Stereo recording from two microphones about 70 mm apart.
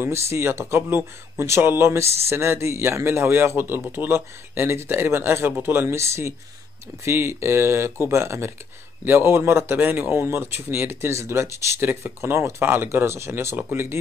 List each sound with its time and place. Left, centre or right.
0.0 s speech: right